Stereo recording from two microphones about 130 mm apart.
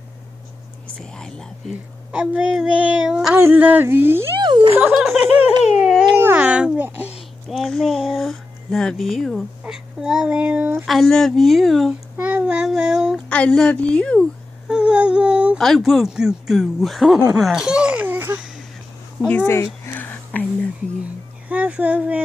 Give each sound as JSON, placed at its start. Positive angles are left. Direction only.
{"t": 1.0, "sound": "speech", "side_deg": 5}
{"t": 2.1, "sound": "speech", "side_deg": -10}
{"t": 4.4, "sound": "a sound", "side_deg": -40}
{"t": 4.9, "sound": "speech", "side_deg": 0}
{"t": 5.8, "sound": "babbling", "side_deg": -5}
{"t": 6.1, "sound": "a sound", "side_deg": -15}
{"t": 7.4, "sound": "speech", "side_deg": 0}
{"t": 10.9, "sound": "speech", "side_deg": 0}
{"t": 13.3, "sound": "a woman's voice", "side_deg": 10}
{"t": 14.7, "sound": "a sound", "side_deg": -10}
{"t": 15.5, "sound": "speech", "side_deg": 0}
{"t": 17.4, "sound": "laughter", "side_deg": -5}
{"t": 19.2, "sound": "a sound", "side_deg": 15}
{"t": 21.0, "sound": "speech", "side_deg": -10}